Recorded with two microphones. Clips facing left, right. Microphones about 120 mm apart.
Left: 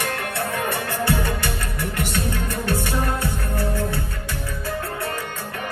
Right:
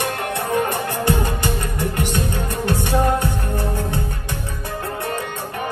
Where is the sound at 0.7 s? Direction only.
20° right (ahead or behind).